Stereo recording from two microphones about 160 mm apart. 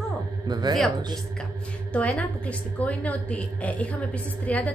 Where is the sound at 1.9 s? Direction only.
5° left (ahead or behind).